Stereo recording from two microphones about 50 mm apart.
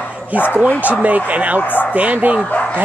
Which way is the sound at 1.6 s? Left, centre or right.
Left.